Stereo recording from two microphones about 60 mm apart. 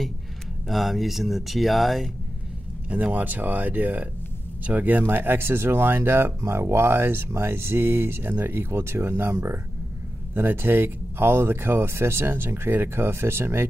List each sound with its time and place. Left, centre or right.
0.7 s speech: centre
2.9 s speech: right